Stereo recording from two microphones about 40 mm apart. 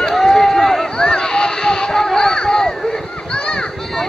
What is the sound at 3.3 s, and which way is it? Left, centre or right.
Children playing, left.